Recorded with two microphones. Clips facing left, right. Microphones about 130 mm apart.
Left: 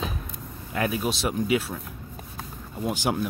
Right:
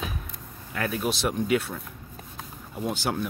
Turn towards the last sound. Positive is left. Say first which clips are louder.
# left 2 dB
turn(degrees=10)  # may be behind; listen again after turning